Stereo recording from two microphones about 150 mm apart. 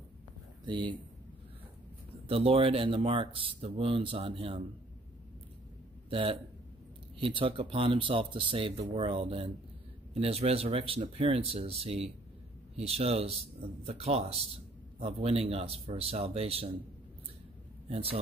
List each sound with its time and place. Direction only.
0.7 s speech: 30° right (ahead or behind)
2.2 s speech: 40° right (ahead or behind)
6.0 s speech: 35° right (ahead or behind)
7.3 s a man's voice: 35° right (ahead or behind)
17.8 s speech: 40° right (ahead or behind)